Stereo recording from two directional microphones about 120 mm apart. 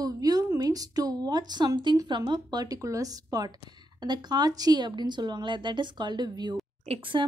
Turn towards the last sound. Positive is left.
turn(degrees=-45)  # may be behind; listen again after turning